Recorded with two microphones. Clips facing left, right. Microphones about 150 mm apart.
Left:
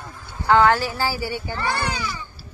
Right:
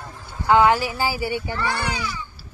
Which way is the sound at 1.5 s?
35° left (ahead or behind).